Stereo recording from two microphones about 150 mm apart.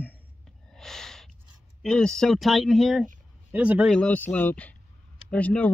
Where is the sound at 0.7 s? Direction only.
5° left (ahead or behind).